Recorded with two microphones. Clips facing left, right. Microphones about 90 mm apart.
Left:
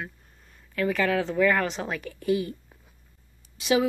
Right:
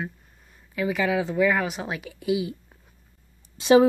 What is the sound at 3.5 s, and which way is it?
Speech, 30° right (ahead or behind).